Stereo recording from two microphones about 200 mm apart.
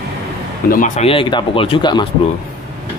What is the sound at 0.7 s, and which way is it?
Speech, 40° left (ahead or behind).